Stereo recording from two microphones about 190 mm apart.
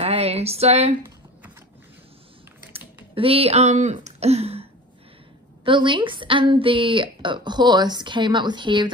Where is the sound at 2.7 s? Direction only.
30° right (ahead or behind).